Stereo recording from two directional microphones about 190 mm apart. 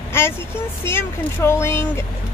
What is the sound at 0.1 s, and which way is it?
Speech, 10° left (ahead or behind).